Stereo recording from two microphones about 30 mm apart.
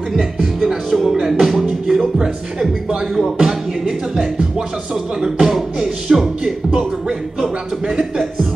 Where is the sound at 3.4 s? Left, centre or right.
Centre.